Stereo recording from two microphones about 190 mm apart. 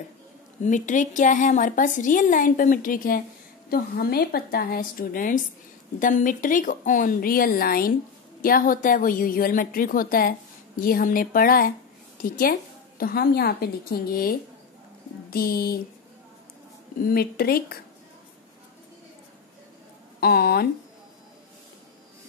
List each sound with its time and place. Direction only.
0.7 s a woman's voice: 40° left (ahead or behind)
17.0 s a woman's voice: 50° left (ahead or behind)
20.2 s a woman's voice: 55° left (ahead or behind)